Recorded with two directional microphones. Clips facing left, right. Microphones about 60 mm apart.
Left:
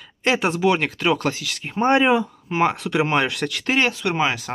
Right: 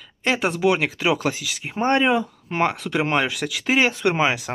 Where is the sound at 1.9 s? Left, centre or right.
Centre.